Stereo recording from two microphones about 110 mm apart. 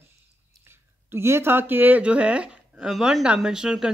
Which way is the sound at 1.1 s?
25° right (ahead or behind).